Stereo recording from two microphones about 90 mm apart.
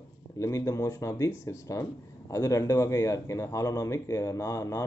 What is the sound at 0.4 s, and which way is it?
Speech, 35° left (ahead or behind).